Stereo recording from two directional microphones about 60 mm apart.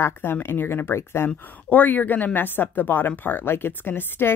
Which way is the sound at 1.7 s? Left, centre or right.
Left.